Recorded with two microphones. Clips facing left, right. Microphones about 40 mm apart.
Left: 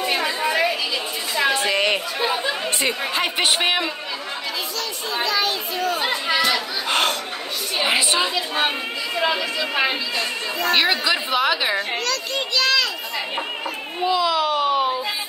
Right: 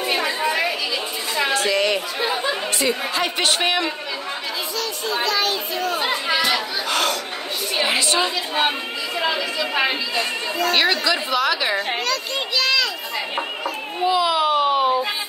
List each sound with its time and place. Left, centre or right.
0.0 s chatter: centre
1.5 s chatter: left
2.1 s a woman's voice: centre
2.8 s a woman's voice: left
3.3 s a woman's voice: centre
5.1 s chatter: centre
6.9 s chatter: left
7.7 s chatter: centre
8.5 s a woman's voice: centre
11.9 s a child's voice: centre
12.5 s children playing: centre
14.0 s a child's voice: centre